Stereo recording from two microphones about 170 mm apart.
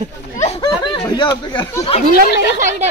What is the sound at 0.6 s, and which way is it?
Snicker, 25° left (ahead or behind).